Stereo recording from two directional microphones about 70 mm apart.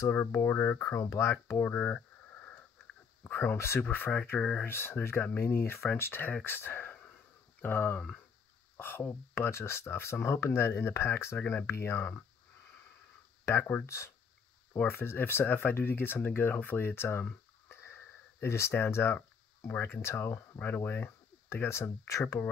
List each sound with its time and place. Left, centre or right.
0.1 s speech: left
0.9 s speech: left
1.7 s sniff: left
3.9 s speech: left
4.4 s speech: centre
4.6 s speech: left
13.6 s speech: left
13.8 s speech: left